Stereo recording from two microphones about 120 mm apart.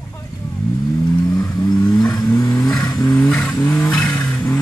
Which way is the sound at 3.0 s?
15° left (ahead or behind).